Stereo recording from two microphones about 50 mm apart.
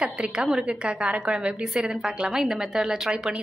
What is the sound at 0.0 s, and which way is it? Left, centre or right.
A woman's voice, centre.